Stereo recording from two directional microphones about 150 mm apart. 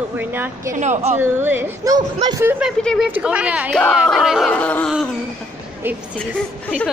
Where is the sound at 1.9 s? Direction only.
25° right (ahead or behind).